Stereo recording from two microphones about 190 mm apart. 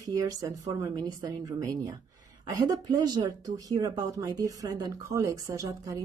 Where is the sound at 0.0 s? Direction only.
20° right (ahead or behind).